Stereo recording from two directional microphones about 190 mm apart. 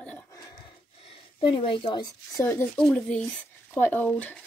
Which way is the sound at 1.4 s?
25° left (ahead or behind).